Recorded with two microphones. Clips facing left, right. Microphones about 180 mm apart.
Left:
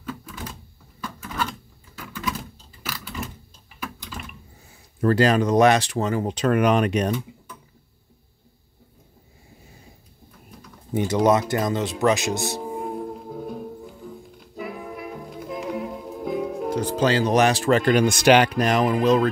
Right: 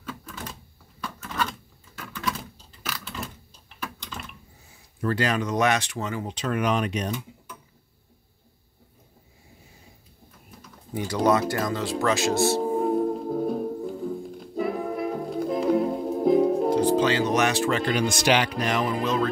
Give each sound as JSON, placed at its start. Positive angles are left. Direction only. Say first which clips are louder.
{"t": 0.0, "sound": "a sound", "louder": "left 3 dB", "side_deg": 5}
{"t": 1.0, "sound": "drawer open or close", "louder": "left 1 dB", "side_deg": 10}
{"t": 2.0, "sound": "a sound", "louder": "left 1 dB", "side_deg": 10}
{"t": 5.0, "sound": "speech", "louder": "left 7 dB", "side_deg": 40}
{"t": 10.9, "sound": "speech", "louder": "left 3 dB", "side_deg": 20}
{"t": 12.6, "sound": "music", "louder": "right 7 dB", "side_deg": -35}
{"t": 17.0, "sound": "speech", "louder": "left 3 dB", "side_deg": 35}